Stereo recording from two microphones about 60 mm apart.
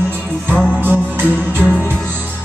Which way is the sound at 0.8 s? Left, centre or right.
Right.